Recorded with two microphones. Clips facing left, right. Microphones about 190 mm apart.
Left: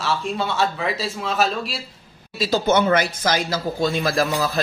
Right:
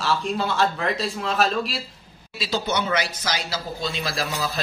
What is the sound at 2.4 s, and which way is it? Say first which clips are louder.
Speech: left 7 dB; 45° left (ahead or behind).